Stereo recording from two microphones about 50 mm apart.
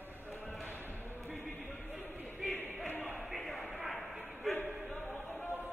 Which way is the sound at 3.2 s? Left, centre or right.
Centre.